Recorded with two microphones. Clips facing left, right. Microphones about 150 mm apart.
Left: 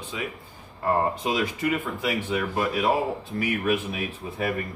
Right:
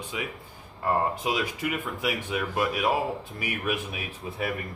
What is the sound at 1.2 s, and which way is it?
Speech, 5° right (ahead or behind).